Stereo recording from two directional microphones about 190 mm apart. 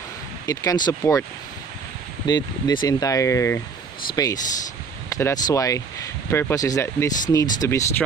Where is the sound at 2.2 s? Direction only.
20° left (ahead or behind).